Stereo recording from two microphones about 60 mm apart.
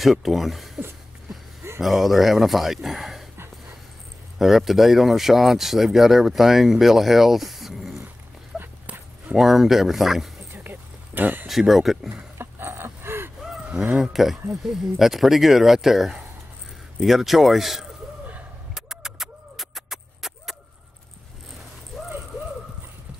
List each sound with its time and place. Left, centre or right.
0.0 s speech: centre
4.4 s speech: centre
8.5 s dog: centre
9.4 s speech: centre
10.5 s a sound: right
11.4 s speech: centre
12.4 s a sound: right
14.1 s speech: centre
18.8 s music: centre